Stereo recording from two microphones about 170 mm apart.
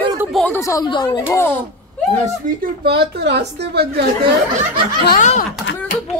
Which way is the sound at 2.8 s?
70° right (ahead or behind).